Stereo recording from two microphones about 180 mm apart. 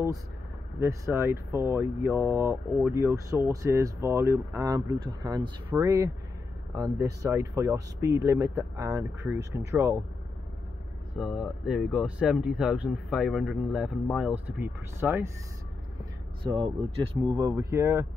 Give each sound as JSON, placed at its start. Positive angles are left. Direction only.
{"t": 0.7, "sound": "speech", "side_deg": -15}
{"t": 11.1, "sound": "speech", "side_deg": 0}
{"t": 16.4, "sound": "speech", "side_deg": -30}